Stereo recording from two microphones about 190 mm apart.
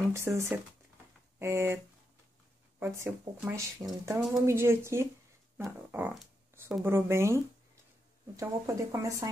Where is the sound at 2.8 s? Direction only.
10° right (ahead or behind).